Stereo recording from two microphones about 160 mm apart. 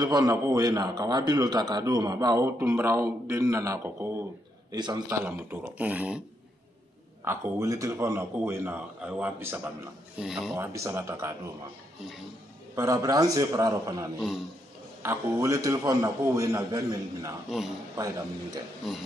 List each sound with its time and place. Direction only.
0.0 s a man's voice: 25° right (ahead or behind); by 6.2 s 10° right (ahead or behind)
7.2 s a man's voice: 15° right (ahead or behind)
10.6 s a man's voice: 20° right (ahead or behind)
12.7 s a man's voice: 20° right (ahead or behind)